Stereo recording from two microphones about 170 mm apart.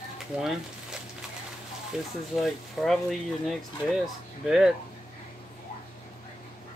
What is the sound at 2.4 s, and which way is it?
Speech, centre (ahead or behind).